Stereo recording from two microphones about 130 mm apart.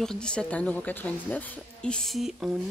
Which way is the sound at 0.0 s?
5° left (ahead or behind).